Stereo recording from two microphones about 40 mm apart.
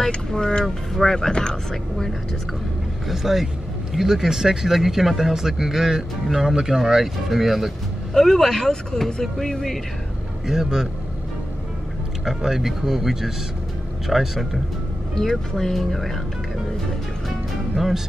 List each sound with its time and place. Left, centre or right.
0.0 s speech: centre
3.1 s speech: centre
8.1 s speech: centre
10.4 s speech: centre
12.4 s speech: centre
15.2 s speech: centre
17.7 s speech: centre